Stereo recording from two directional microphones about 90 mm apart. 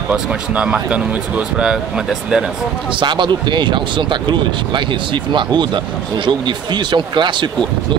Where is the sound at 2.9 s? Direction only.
60° right (ahead or behind).